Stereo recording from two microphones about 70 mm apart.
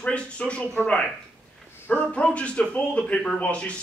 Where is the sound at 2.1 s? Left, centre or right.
Centre.